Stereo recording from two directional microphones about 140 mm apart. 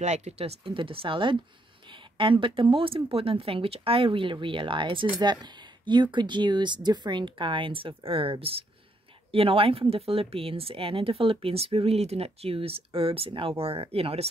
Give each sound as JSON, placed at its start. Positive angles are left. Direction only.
{"t": 0.0, "sound": "speech", "side_deg": -55}